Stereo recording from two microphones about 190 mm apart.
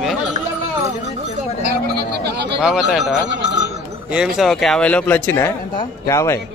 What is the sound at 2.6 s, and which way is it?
Speech, 5° right (ahead or behind).